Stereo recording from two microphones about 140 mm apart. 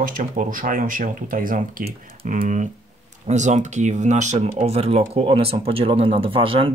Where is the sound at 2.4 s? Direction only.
60° right (ahead or behind).